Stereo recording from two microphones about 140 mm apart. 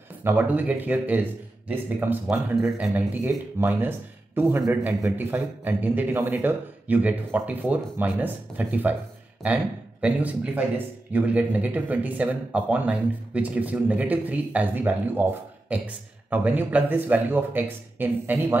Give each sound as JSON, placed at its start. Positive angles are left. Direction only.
{"t": 0.2, "sound": "a man's voice", "side_deg": -15}
{"t": 16.3, "sound": "a man's voice", "side_deg": -10}